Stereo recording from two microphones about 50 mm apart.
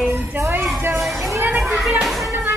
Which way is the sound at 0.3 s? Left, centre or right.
Right.